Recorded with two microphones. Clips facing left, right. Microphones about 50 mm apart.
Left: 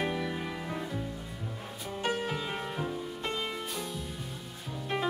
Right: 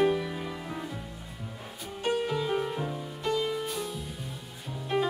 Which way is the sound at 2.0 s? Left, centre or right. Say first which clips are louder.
Right 4 dB; centre.